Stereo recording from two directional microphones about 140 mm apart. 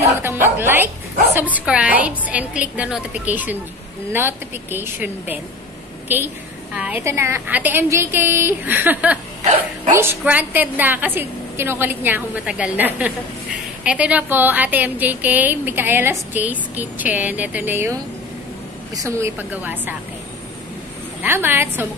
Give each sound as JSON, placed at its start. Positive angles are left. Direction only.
{"t": 0.2, "sound": "a woman's voice", "side_deg": -15}
{"t": 18.9, "sound": "a woman's voice", "side_deg": -20}
{"t": 21.2, "sound": "a woman's voice", "side_deg": -15}